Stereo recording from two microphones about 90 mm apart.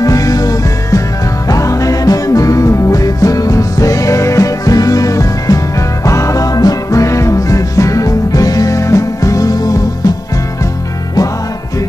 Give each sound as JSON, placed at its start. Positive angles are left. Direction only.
{"t": 0.0, "sound": "music", "side_deg": 40}